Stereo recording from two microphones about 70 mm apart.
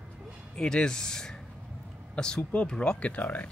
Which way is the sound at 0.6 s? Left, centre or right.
Centre.